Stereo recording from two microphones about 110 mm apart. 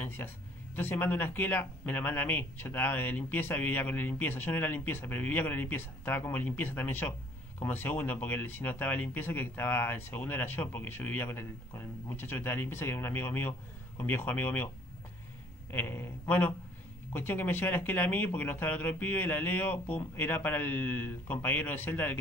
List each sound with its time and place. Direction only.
0.0 s speech: 20° left (ahead or behind)
15.7 s speech: 20° left (ahead or behind)